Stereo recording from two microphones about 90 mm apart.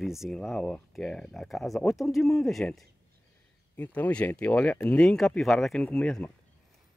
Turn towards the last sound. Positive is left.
turn(degrees=10)  # may be behind; listen again after turning